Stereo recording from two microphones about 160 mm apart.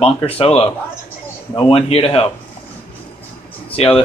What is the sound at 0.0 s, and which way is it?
Speech, 40° left (ahead or behind).